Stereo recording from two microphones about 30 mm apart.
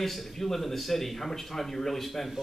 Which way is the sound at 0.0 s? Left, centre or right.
Centre.